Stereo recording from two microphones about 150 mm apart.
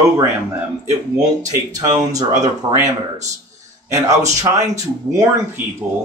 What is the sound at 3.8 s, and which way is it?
A man's voice, 20° right (ahead or behind).